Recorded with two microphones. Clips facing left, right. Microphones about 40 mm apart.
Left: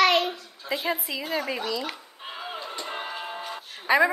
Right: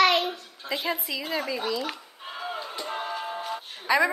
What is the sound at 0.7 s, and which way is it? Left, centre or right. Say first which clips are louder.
Speech: left 1 dB; centre.